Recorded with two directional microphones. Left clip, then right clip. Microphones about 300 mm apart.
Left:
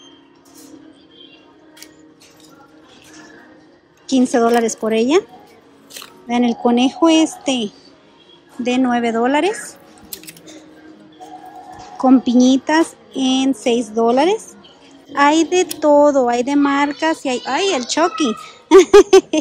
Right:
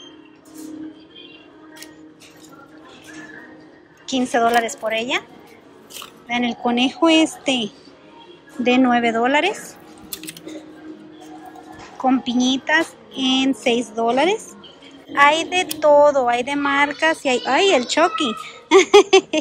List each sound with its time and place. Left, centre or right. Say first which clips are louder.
4.1 s a woman's voice: left 3 dB; centre
6.2 s speech: left 4 dB; centre
12.0 s speech: left 6 dB; centre